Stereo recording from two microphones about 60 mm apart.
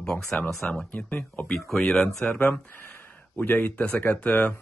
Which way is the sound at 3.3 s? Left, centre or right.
Left.